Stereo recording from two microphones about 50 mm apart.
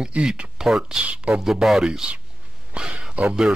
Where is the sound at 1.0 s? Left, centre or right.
Right.